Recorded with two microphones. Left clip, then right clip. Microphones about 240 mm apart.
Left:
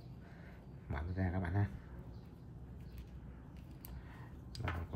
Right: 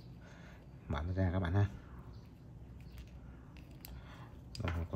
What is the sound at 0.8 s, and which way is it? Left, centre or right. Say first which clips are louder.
Speech: right 4 dB; centre.